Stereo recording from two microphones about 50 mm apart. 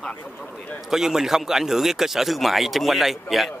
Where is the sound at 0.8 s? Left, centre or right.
Centre.